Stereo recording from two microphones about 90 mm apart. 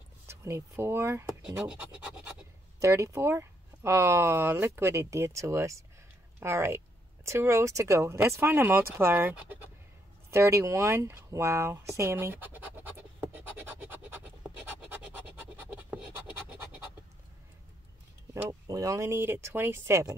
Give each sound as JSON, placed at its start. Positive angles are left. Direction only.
{"t": 0.3, "sound": "speech", "side_deg": -30}
{"t": 1.7, "sound": "scratch", "side_deg": -10}
{"t": 2.8, "sound": "speech", "side_deg": -35}
{"t": 10.3, "sound": "speech", "side_deg": -35}
{"t": 13.3, "sound": "scratch", "side_deg": -25}
{"t": 18.3, "sound": "speech", "side_deg": -40}